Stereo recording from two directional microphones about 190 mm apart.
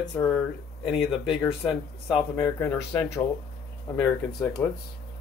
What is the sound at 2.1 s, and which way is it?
Speech, 30° left (ahead or behind).